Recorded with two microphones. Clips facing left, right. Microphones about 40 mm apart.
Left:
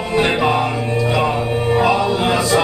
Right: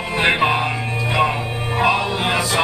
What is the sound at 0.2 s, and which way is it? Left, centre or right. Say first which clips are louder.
Music: even; right.